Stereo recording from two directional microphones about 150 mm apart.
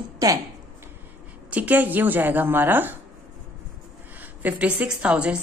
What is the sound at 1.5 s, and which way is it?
A woman's voice, 10° right (ahead or behind).